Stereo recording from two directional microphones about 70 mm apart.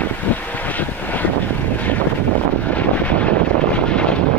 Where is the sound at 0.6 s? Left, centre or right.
Left.